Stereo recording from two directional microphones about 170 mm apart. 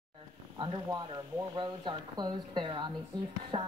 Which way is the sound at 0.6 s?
25° right (ahead or behind).